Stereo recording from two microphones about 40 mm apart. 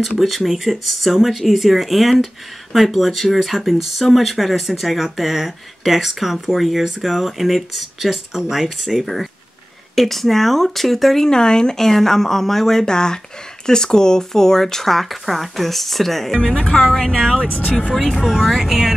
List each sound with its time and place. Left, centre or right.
0.2 s speech: centre
9.9 s speech: centre
11.2 s speech: centre
16.5 s speech: left
16.8 s speech: centre
17.5 s speech: left
17.9 s speech: centre